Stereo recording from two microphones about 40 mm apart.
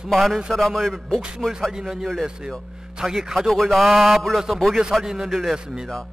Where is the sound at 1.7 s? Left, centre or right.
Centre.